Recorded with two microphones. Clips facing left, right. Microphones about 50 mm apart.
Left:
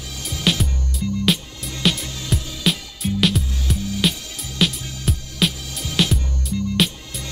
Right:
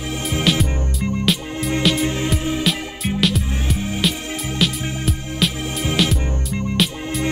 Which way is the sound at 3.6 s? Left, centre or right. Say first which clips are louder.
Right 2 dB; right.